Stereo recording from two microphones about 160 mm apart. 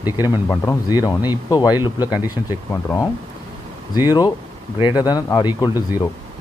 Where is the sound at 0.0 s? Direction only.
15° right (ahead or behind).